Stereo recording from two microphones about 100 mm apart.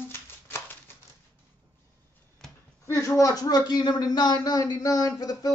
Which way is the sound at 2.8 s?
30° left (ahead or behind).